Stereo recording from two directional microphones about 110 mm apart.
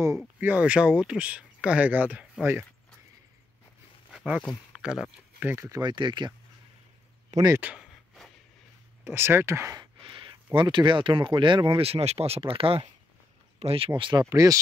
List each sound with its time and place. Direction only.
0.4 s speech: 15° right (ahead or behind)
4.1 s a sound: 5° right (ahead or behind)
4.8 s speech: 10° right (ahead or behind)
5.7 s speech: 40° right (ahead or behind)
7.3 s speech: 90° right
9.0 s speech: 20° right (ahead or behind)
9.8 s speech: 50° right (ahead or behind)
14.3 s speech: 35° right (ahead or behind)